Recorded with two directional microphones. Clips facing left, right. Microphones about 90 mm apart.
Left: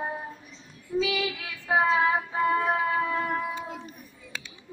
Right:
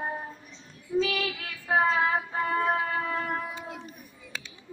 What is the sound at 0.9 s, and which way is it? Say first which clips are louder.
Child singing: right 1 dB; 5° right (ahead or behind).